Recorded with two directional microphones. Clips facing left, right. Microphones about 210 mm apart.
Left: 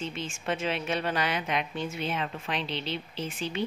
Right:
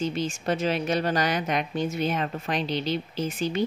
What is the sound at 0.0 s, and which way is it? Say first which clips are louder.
A woman's voice: right 7 dB; 40° right (ahead or behind).